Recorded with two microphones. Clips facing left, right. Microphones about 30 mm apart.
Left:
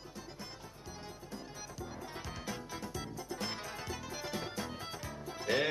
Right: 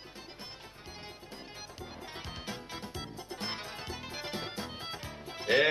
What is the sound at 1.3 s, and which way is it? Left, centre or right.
Music, right.